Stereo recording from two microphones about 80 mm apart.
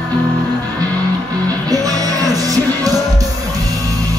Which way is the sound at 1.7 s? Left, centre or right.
Right.